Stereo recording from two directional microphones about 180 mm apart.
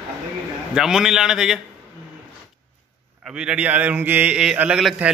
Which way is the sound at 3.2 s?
5° right (ahead or behind).